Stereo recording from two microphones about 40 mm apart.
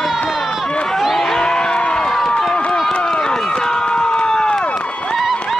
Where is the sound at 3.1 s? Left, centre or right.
Centre.